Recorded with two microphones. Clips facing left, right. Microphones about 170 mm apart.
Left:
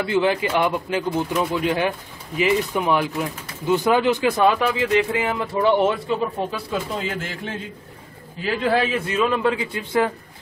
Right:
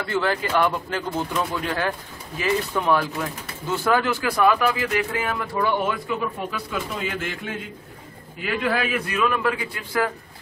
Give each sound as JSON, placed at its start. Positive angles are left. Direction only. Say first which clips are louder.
{"t": 0.0, "sound": "speech", "louder": "left 4 dB", "side_deg": 15}